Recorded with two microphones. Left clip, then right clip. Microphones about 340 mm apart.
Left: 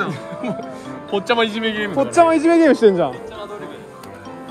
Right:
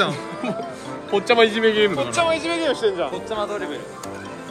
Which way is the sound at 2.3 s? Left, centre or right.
Centre.